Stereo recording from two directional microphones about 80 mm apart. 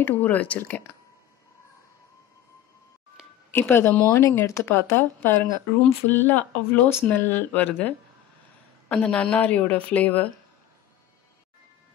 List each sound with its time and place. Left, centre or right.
0.0 s speech: left
3.5 s speech: left